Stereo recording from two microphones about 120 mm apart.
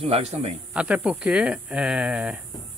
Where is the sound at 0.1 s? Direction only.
60° right (ahead or behind).